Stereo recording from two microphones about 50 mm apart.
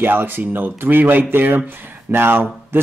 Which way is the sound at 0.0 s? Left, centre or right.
Right.